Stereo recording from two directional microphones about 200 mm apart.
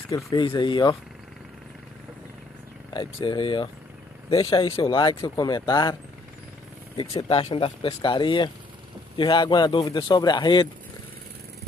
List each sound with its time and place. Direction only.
0.1 s speech: 20° left (ahead or behind)
2.9 s speech: 25° left (ahead or behind)
7.0 s speech: 25° left (ahead or behind)